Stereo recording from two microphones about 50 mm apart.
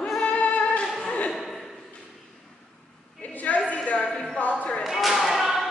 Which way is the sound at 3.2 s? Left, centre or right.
Left.